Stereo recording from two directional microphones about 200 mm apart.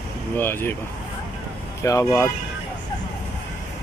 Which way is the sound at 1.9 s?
15° left (ahead or behind).